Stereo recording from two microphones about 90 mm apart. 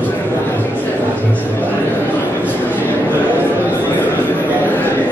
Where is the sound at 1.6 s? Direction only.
20° left (ahead or behind).